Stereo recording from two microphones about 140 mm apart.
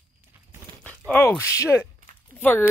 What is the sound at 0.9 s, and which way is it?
Speech, 10° left (ahead or behind).